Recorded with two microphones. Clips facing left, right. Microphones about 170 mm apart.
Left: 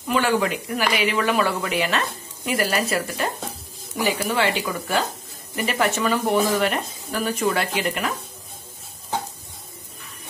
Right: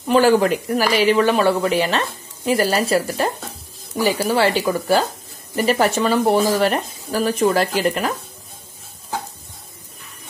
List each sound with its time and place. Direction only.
0.1 s speech: 35° right (ahead or behind)